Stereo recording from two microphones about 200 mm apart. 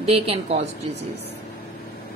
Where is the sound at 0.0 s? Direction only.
30° right (ahead or behind).